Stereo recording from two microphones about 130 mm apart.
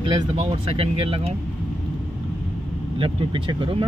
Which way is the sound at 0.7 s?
50° right (ahead or behind).